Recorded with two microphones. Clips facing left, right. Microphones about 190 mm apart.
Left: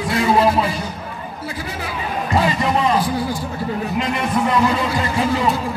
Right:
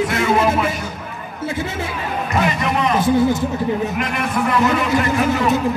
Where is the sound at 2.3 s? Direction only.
30° left (ahead or behind).